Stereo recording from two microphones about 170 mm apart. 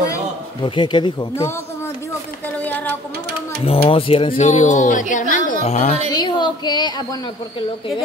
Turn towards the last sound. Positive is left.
turn(degrees=25)  # may be behind; listen again after turning